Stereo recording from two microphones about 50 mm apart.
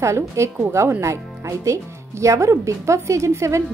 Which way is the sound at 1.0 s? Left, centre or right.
Right.